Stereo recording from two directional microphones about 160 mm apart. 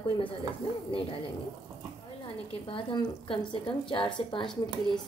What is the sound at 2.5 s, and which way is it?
A woman's voice, 35° left (ahead or behind).